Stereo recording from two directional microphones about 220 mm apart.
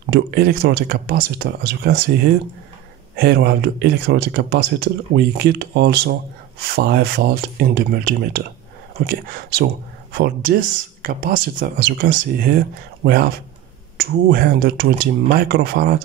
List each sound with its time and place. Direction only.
0.1 s speech: 45° right (ahead or behind)
3.2 s speech: 45° right (ahead or behind)